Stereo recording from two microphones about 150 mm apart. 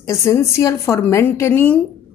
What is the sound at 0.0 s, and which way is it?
A woman's voice, 20° left (ahead or behind).